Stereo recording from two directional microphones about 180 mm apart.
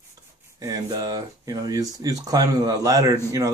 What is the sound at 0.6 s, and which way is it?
Speech, 20° right (ahead or behind).